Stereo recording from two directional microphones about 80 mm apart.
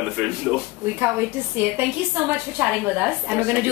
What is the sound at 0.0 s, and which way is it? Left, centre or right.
Speech, centre.